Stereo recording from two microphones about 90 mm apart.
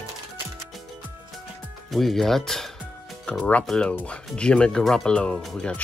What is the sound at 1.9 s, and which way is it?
Speech, centre (ahead or behind).